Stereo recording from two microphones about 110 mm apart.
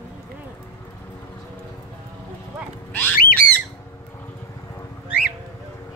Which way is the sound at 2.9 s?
15° left (ahead or behind).